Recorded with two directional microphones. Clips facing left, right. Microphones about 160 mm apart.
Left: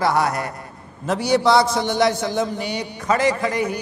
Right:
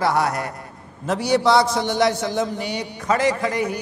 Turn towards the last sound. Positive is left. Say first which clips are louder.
# left 1 dB
turn(degrees=15)  # may be behind; listen again after turning